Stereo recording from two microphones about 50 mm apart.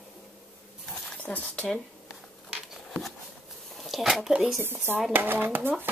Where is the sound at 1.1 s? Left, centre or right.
Left.